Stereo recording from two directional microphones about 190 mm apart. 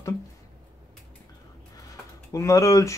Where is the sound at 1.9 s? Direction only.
15° left (ahead or behind).